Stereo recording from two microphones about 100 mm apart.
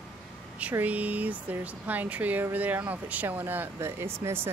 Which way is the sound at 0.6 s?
15° right (ahead or behind).